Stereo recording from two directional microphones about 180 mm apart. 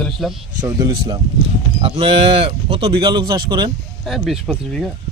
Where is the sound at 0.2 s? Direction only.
Centre (ahead or behind).